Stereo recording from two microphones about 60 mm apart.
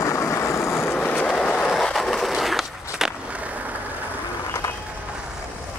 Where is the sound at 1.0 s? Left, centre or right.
Left.